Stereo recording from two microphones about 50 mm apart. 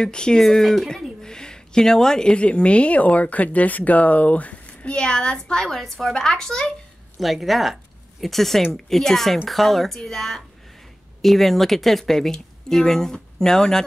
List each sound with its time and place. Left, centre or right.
0.0 s speech: centre
7.2 s speech: centre